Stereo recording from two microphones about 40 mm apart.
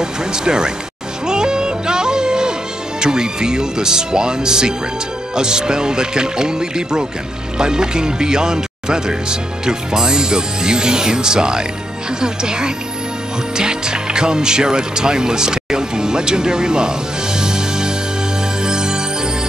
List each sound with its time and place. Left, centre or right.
0.0 s speech: centre
1.2 s music: centre
3.0 s speech: centre
18.6 s music: centre